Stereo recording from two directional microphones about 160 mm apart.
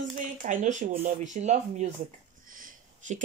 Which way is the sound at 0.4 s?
55° right (ahead or behind).